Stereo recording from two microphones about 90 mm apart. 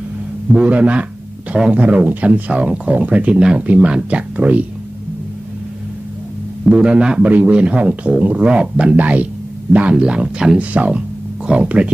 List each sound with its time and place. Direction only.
0.5 s a man's voice: 10° right (ahead or behind)
6.7 s a man's voice: 10° right (ahead or behind)